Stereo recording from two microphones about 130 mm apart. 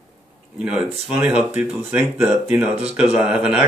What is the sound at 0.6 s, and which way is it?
A man's voice, 5° right (ahead or behind).